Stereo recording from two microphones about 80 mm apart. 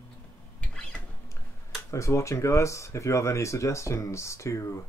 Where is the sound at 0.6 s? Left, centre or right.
Centre.